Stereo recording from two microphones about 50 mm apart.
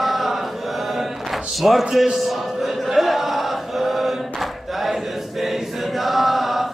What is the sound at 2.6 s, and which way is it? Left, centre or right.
Chant, centre.